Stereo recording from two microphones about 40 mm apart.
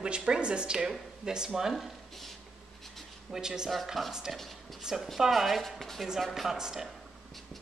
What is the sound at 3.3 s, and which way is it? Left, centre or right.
Speech, centre.